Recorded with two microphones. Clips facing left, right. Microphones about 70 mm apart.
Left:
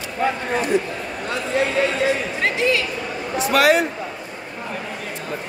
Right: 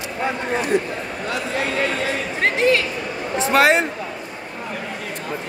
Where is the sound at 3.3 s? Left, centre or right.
Right.